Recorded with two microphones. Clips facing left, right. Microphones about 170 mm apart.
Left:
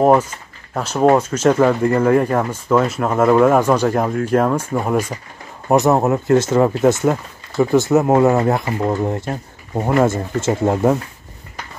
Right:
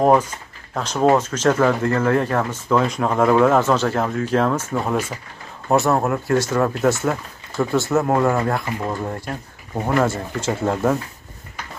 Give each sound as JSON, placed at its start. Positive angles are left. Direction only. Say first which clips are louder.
{"t": 0.3, "sound": "speech", "louder": "left 2 dB", "side_deg": 10}